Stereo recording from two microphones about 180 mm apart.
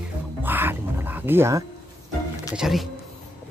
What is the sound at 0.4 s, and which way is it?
Music, 10° right (ahead or behind).